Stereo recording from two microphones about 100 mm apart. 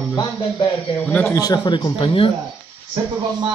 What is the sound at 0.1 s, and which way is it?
Speech, 45° left (ahead or behind).